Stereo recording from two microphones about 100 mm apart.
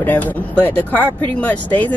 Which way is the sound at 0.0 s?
15° left (ahead or behind).